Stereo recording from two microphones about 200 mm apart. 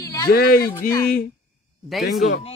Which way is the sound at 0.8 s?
15° left (ahead or behind).